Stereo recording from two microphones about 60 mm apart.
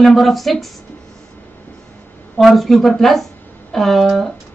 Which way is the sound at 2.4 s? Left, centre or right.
Centre.